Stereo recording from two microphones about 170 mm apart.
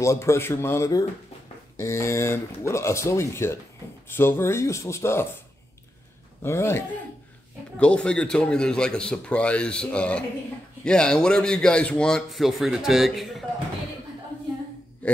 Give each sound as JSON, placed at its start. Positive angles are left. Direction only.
{"t": 0.0, "sound": "speech", "side_deg": 15}
{"t": 6.4, "sound": "speech", "side_deg": 15}
{"t": 7.8, "sound": "speech", "side_deg": 5}